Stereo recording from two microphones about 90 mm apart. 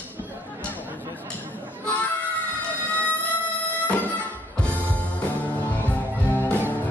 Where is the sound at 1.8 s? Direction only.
15° left (ahead or behind).